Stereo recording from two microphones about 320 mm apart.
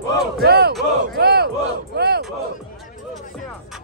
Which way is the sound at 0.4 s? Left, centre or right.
Right.